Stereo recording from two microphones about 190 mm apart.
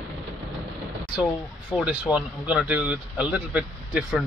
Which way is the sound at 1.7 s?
5° right (ahead or behind).